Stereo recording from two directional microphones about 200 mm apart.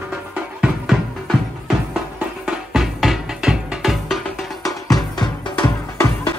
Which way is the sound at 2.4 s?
5° right (ahead or behind).